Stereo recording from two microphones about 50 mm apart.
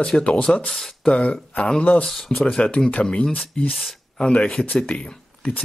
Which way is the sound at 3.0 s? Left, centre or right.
Centre.